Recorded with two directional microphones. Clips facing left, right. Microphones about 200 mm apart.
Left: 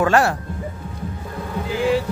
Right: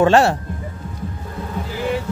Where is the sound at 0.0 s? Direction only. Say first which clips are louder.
Right 4 dB; 25° right (ahead or behind).